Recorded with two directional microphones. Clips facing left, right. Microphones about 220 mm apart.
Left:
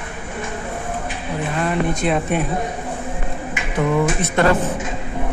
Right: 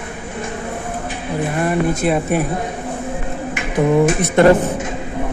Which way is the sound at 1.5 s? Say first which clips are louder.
Right 2 dB; 10° right (ahead or behind).